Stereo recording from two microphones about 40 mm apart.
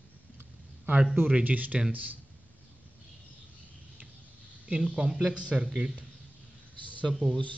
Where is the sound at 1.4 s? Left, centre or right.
Right.